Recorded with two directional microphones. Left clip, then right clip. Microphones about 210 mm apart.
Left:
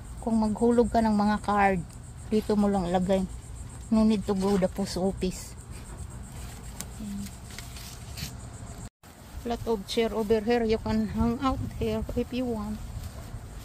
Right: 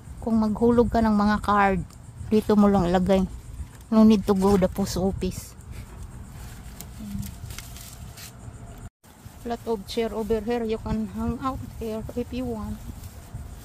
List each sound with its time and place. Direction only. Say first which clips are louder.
0.2 s speech: right 3 dB; 20° right (ahead or behind)
9.5 s speech: right 1 dB; 5° right (ahead or behind)
12.2 s speech: even; 5° right (ahead or behind)